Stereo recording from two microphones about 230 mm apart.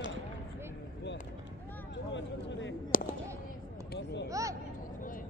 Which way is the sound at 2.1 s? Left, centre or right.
Left.